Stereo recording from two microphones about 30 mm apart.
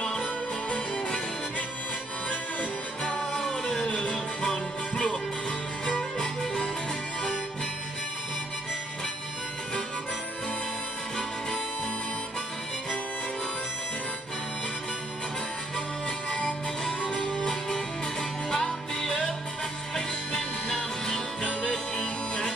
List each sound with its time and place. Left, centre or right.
0.0 s music: left
3.4 s music: centre
3.9 s music: left
4.4 s music: left
16.3 s music: left
17.1 s music: centre
19.9 s music: centre